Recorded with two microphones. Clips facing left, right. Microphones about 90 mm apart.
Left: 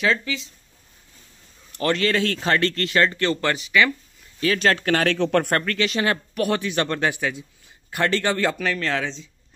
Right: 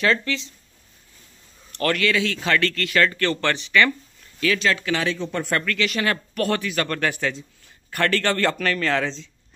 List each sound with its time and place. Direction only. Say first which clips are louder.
0.0 s speech: right 1 dB; 5° left (ahead or behind)
2.0 s speech: left 1 dB; 40° left (ahead or behind)
2.5 s speech: even; 30° left (ahead or behind); by 3.9 s 10° left (ahead or behind)
4.6 s speech: left 3 dB; 45° left (ahead or behind); by 5.5 s 65° left (ahead or behind)
5.5 s speech: left 1 dB; 35° left (ahead or behind); by 9.3 s centre (ahead or behind)